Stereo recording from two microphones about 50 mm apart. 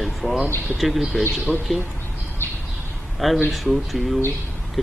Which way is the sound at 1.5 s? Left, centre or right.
Right.